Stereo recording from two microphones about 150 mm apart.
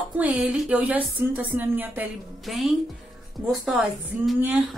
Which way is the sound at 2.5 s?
Centre (ahead or behind).